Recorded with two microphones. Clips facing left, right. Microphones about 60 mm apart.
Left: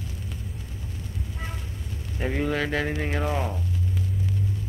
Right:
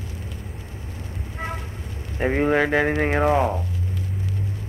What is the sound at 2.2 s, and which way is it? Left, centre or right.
Speech, right.